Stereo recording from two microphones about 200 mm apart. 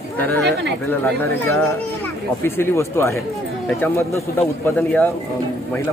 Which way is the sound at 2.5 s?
10° left (ahead or behind).